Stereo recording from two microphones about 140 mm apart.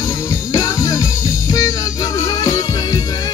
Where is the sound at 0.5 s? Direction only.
20° left (ahead or behind).